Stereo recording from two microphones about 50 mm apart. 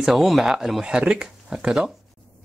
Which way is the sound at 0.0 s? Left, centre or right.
Centre.